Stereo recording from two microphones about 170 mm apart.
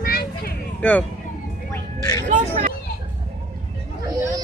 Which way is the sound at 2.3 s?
50° right (ahead or behind).